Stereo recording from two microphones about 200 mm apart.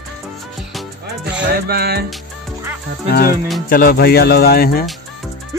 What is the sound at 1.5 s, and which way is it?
Music, 50° right (ahead or behind).